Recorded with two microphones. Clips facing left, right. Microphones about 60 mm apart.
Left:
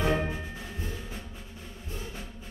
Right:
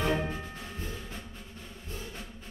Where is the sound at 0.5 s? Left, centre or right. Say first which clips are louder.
Left 1 dB; centre.